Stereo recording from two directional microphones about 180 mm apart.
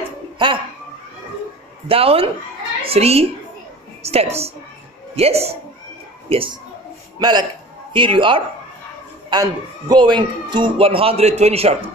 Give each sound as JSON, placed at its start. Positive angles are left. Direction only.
{"t": 0.4, "sound": "speech", "side_deg": -25}
{"t": 1.9, "sound": "a woman's voice", "side_deg": -30}